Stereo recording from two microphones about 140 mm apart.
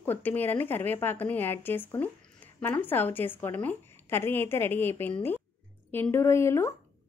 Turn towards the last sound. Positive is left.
turn(degrees=20)  # may be behind; listen again after turning